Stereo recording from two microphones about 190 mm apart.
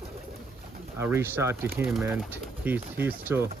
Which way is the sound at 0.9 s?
10° right (ahead or behind).